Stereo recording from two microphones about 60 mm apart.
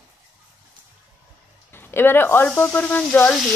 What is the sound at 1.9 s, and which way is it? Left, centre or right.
Speech, left.